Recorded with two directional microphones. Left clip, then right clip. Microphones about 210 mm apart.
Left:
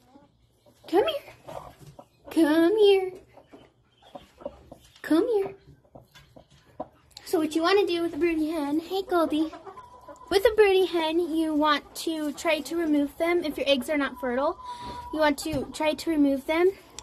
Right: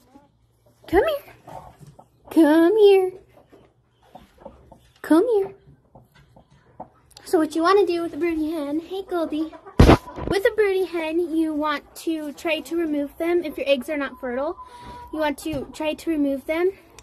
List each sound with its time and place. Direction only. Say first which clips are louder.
0.9 s a child's voice: right 4 dB; 40° right (ahead or behind)
5.0 s speech: right 5 dB; 35° right (ahead or behind)
7.2 s speech: right 5 dB; 35° right (ahead or behind)
8.2 s a sound: right 2 dB; 15° right (ahead or behind)
8.9 s a woman's voice: left 3 dB; 10° left (ahead or behind)